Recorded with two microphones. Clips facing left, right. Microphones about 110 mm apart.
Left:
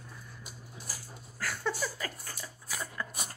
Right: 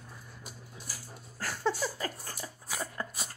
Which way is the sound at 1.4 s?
30° right (ahead or behind).